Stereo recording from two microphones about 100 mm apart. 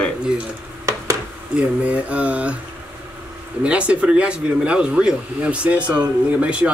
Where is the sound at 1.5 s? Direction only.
10° right (ahead or behind).